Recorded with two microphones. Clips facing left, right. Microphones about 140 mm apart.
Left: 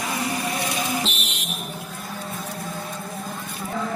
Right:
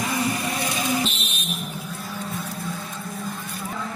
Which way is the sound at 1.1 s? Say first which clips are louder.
Left 1 dB; 90° left.